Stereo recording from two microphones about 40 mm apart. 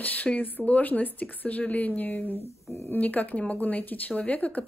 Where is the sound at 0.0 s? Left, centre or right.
Left.